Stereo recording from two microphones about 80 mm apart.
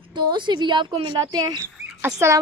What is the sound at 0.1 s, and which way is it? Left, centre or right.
A woman's voice, right.